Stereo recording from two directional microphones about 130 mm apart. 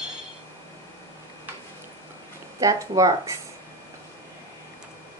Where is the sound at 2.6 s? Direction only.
25° right (ahead or behind).